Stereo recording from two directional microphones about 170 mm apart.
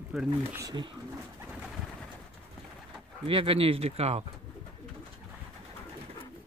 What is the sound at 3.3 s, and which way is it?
Speech, 30° right (ahead or behind).